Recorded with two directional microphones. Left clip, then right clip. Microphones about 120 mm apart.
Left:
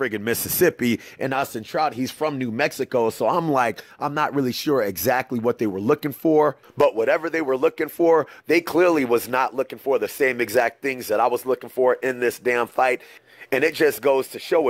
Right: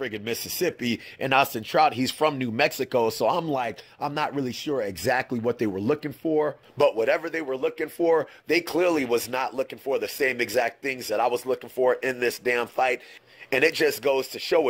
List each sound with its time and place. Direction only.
0.0 s speech: 45° left (ahead or behind)
1.3 s speech: 20° left (ahead or behind)
3.3 s speech: 50° left (ahead or behind)
4.0 s speech: 35° left (ahead or behind)
4.6 s speech: 60° left (ahead or behind)
4.8 s speech: 30° left (ahead or behind)
6.2 s speech: 45° left (ahead or behind)
6.9 s speech: 30° left (ahead or behind)
7.2 s speech: 55° left (ahead or behind)
7.8 s speech: 40° left (ahead or behind)
13.6 s speech: 30° left (ahead or behind)
13.8 s speech: 40° left (ahead or behind)